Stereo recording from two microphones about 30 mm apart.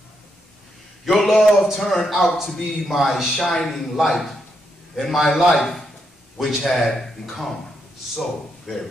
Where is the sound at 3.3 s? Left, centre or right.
Centre.